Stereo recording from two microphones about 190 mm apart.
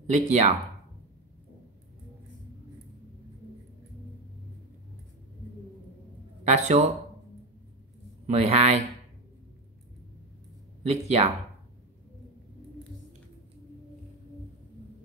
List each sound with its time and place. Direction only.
0.1 s speech: 35° right (ahead or behind)
6.4 s speech: 35° right (ahead or behind)
8.3 s speech: 35° right (ahead or behind)
10.8 s speech: 35° right (ahead or behind)